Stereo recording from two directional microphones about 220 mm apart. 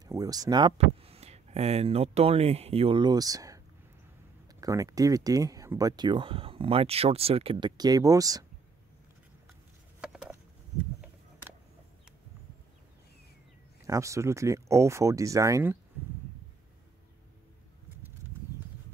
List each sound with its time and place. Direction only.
0.0 s speech: 15° right (ahead or behind)
9.9 s a sound: 5° right (ahead or behind)
13.8 s speech: 15° right (ahead or behind)